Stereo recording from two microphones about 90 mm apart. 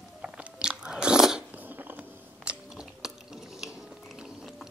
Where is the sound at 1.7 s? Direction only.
20° right (ahead or behind).